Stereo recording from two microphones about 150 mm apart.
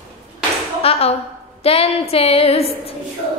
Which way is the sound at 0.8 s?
40° left (ahead or behind).